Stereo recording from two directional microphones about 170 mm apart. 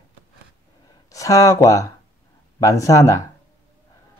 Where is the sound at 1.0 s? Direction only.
20° left (ahead or behind).